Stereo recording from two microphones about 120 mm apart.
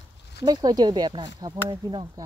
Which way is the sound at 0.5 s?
35° right (ahead or behind).